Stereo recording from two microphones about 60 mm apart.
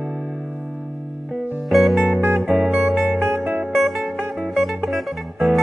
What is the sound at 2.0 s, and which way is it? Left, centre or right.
Music, right.